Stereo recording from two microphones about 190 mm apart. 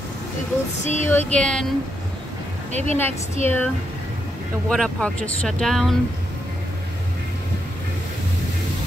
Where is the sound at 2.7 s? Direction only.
35° right (ahead or behind).